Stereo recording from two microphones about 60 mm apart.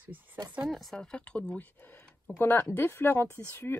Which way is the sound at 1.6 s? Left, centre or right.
Left.